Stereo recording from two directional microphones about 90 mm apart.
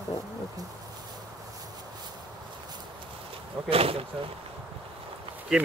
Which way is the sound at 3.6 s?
90° right.